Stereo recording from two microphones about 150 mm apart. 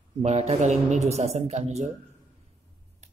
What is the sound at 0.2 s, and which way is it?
Speech, 45° right (ahead or behind).